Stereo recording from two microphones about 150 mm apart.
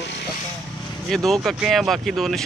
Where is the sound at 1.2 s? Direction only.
Centre (ahead or behind).